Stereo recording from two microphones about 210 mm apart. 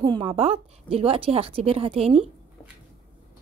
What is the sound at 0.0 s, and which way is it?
A woman's voice, 25° right (ahead or behind).